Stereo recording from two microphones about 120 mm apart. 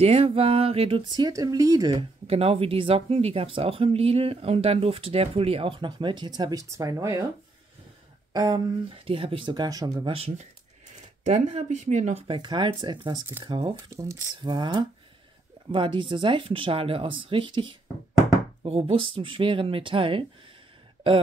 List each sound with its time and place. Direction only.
0.0 s speech: 55° right (ahead or behind)
1.0 s speech: 35° right (ahead or behind)
2.0 s speech: 55° right (ahead or behind); by 7.2 s 25° right (ahead or behind)
8.3 s speech: 35° right (ahead or behind)
9.0 s speech: 50° right (ahead or behind); by 9.9 s 30° right (ahead or behind)
10.0 s speech: 55° right (ahead or behind)
11.2 s speech: 75° right (ahead or behind)
12.3 s speech: 40° right (ahead or behind)
13.8 s speech: 25° right (ahead or behind)
14.4 s speech: 40° right (ahead or behind)